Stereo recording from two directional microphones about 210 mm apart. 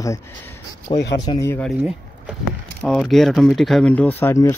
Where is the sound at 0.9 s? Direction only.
55° left (ahead or behind).